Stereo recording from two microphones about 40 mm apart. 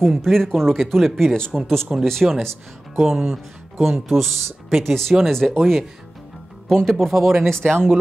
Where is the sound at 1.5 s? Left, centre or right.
Centre.